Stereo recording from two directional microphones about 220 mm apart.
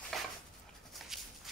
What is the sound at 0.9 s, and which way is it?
Walk, centre (ahead or behind).